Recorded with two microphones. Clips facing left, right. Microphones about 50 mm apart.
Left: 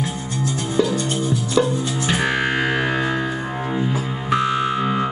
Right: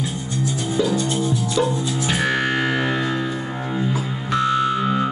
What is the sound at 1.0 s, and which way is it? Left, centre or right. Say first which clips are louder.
Music: even; left.